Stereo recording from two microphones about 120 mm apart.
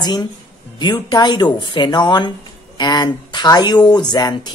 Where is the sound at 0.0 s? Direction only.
35° left (ahead or behind).